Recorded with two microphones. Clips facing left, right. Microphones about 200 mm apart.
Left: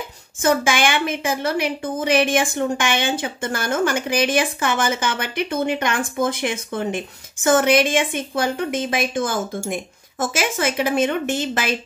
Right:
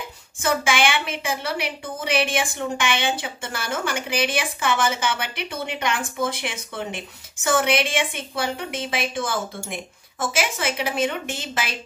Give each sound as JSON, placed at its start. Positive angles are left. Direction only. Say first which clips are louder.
{"t": 0.4, "sound": "a woman's voice", "louder": "left 3 dB", "side_deg": 45}